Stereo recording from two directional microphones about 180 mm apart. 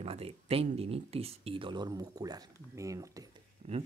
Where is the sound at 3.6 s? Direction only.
30° right (ahead or behind).